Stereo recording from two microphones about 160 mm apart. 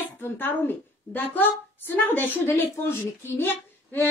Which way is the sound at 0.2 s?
10° left (ahead or behind).